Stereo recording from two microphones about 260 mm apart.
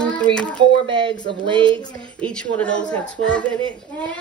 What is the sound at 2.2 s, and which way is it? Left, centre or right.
Speech, centre.